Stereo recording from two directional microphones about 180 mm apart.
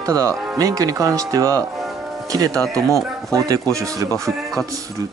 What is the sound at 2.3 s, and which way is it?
Speech, 20° right (ahead or behind).